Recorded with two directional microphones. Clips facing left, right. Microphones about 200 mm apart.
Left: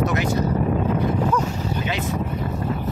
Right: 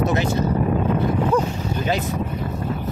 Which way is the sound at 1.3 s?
40° right (ahead or behind).